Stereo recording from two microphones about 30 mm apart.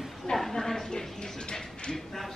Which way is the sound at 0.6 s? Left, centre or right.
Centre.